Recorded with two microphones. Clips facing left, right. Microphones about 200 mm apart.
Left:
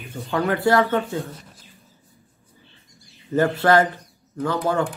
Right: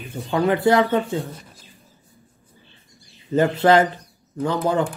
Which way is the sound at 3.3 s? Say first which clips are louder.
Right 2 dB; 20° right (ahead or behind).